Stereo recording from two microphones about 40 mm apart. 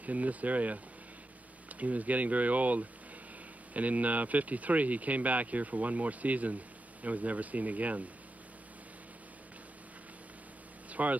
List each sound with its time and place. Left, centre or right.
0.0 s speech: right
1.8 s speech: right
10.9 s a sound: right